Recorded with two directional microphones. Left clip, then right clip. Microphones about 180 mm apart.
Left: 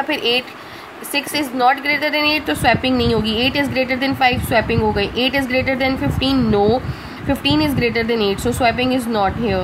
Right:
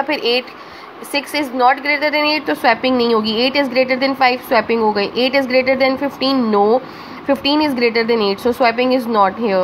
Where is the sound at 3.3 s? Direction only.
35° left (ahead or behind).